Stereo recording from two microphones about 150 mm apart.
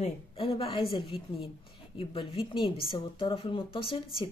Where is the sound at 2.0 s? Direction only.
35° left (ahead or behind).